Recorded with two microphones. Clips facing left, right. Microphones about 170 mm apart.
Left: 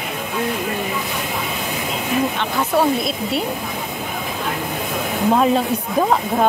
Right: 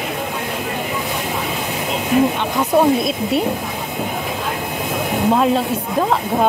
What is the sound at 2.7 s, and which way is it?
Speech, 20° right (ahead or behind).